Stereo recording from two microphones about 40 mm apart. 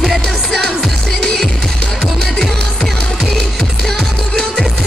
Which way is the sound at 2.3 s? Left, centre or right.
Centre.